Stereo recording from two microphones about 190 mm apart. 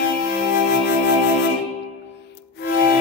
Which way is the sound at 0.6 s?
60° left (ahead or behind).